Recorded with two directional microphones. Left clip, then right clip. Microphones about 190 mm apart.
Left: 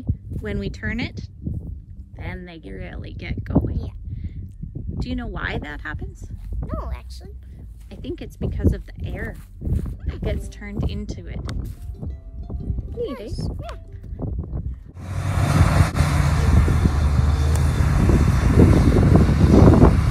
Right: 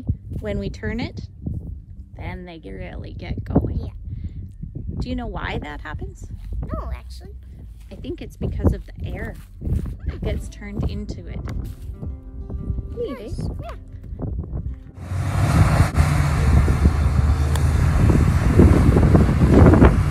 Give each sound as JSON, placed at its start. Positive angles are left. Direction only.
{"t": 0.0, "sound": "speech", "side_deg": -5}
{"t": 3.6, "sound": "whispering", "side_deg": -5}
{"t": 4.9, "sound": "speech", "side_deg": -10}
{"t": 11.5, "sound": "music", "side_deg": 5}
{"t": 14.2, "sound": "a sound", "side_deg": 20}
{"t": 15.0, "sound": "vehicle", "side_deg": -5}